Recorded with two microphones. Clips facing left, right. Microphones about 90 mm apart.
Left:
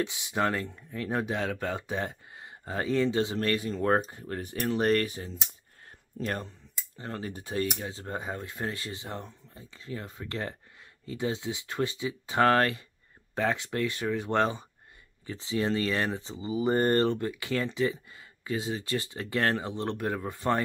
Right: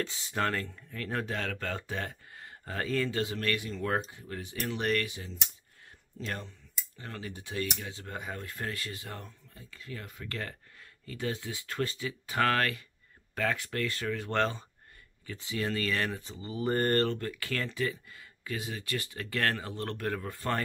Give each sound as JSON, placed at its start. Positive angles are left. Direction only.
{"t": 0.0, "sound": "speech", "side_deg": 15}
{"t": 7.0, "sound": "speech", "side_deg": 35}
{"t": 15.2, "sound": "speech", "side_deg": 30}